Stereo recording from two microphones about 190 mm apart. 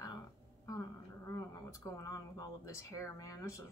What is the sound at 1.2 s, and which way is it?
A woman's voice, 15° left (ahead or behind).